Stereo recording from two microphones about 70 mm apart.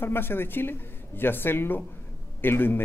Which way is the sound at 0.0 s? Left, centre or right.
Left.